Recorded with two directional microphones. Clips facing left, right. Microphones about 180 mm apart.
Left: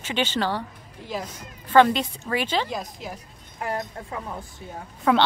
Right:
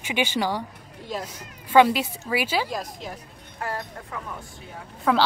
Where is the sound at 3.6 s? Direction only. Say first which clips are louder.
Left 2 dB; 20° left (ahead or behind).